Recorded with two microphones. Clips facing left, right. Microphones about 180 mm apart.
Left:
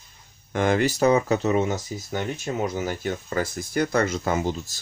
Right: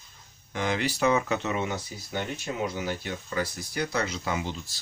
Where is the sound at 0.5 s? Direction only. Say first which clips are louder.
Left 7 dB; 50° left (ahead or behind).